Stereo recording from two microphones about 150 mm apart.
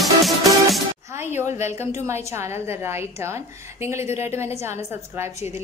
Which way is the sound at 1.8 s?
20° right (ahead or behind).